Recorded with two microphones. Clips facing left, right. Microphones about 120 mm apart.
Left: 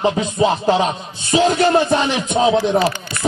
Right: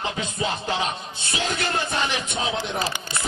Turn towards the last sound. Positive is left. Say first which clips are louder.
# left 10 dB
turn(degrees=90)